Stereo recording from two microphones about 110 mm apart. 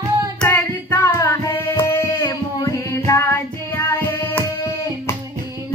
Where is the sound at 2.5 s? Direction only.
30° left (ahead or behind).